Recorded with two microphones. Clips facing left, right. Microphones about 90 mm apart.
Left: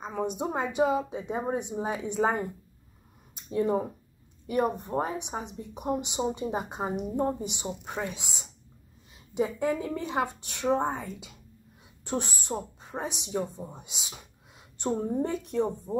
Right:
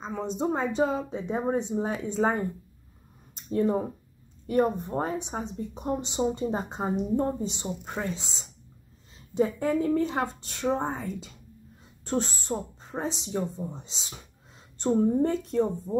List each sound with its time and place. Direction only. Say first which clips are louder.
0.0 s speech: right 1 dB; 15° left (ahead or behind)
3.4 s speech: right 1 dB; 15° left (ahead or behind)
9.3 s speech: right 2 dB; 15° left (ahead or behind)